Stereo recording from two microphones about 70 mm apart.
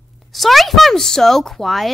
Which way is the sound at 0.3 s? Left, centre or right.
Centre.